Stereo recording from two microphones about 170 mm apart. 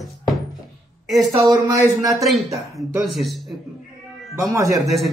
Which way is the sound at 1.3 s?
20° right (ahead or behind).